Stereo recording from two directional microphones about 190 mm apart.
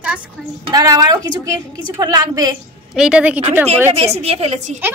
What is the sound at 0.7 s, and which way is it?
A woman's voice, 20° right (ahead or behind).